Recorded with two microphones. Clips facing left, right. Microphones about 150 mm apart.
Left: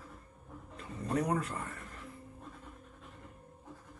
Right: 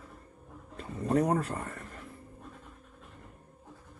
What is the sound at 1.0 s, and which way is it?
Speech, 40° right (ahead or behind).